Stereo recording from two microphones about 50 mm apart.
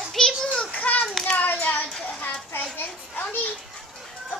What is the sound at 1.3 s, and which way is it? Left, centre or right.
Hands, left.